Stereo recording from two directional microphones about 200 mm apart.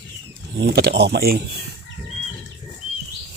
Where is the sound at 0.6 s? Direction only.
55° right (ahead or behind).